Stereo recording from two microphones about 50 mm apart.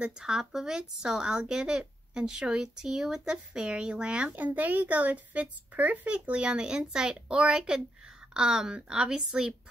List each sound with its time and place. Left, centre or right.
0.2 s speech: centre
4.4 s a child's voice: right; by 9.5 s centre